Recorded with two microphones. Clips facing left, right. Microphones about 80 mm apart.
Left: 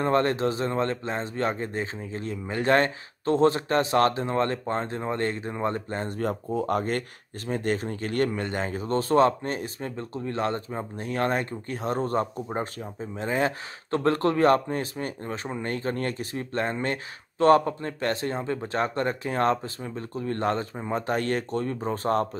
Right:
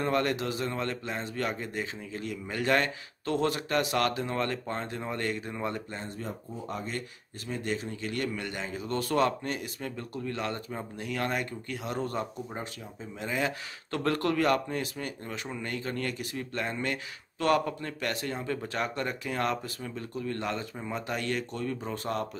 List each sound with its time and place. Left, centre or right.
0.0 s a man's voice: left